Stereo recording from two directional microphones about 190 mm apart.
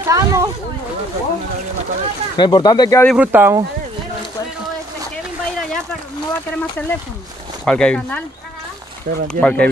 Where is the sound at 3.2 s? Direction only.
10° right (ahead or behind).